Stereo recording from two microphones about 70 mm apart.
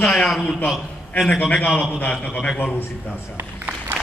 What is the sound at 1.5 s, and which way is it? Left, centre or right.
Speech, centre.